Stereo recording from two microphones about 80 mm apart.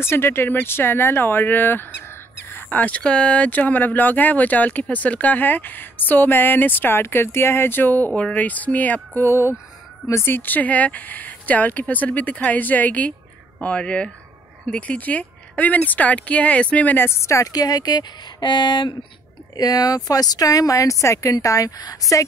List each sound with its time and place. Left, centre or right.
0.0 s speech: left
10.0 s speech: left
17.5 s speech: left
19.5 s speech: left